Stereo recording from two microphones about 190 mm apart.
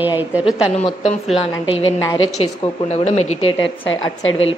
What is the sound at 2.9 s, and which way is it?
Speech, 35° left (ahead or behind).